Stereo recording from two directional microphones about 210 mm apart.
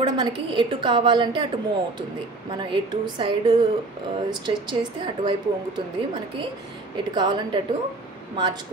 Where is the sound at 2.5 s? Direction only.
20° right (ahead or behind).